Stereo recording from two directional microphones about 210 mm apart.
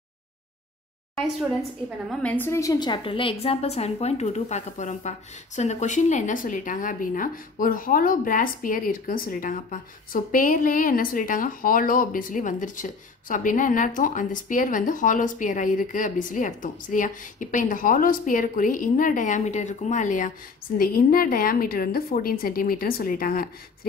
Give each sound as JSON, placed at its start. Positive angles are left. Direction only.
{"t": 2.0, "sound": "a woman's voice", "side_deg": 10}